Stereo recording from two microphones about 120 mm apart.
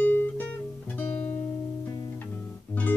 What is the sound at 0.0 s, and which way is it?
Music, 15° left (ahead or behind).